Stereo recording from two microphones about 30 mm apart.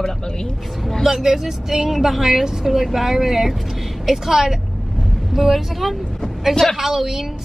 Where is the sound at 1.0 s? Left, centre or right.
Centre.